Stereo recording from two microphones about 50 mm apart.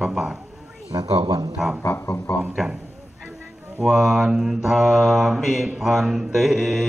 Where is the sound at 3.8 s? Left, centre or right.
Centre.